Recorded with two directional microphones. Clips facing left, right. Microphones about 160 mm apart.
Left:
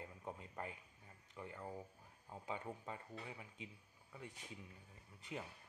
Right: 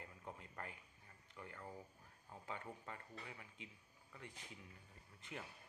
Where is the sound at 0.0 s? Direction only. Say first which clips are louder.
Left 4 dB; 20° left (ahead or behind).